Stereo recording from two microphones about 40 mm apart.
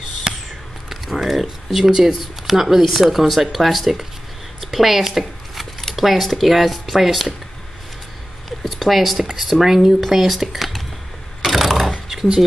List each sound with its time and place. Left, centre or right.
0.8 s a sound: centre
2.0 s speech: centre
2.8 s speech: centre
8.6 s speech: centre
11.4 s mechanisms: centre
12.1 s a sound: centre